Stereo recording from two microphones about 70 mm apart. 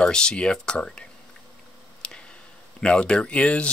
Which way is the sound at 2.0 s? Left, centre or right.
Centre.